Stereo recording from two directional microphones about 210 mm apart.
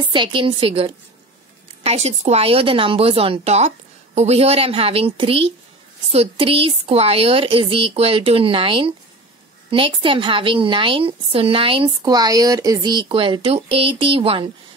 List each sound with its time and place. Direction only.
0.0 s a woman's voice: 25° right (ahead or behind)